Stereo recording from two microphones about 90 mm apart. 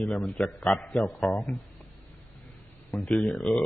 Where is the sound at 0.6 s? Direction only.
15° left (ahead or behind).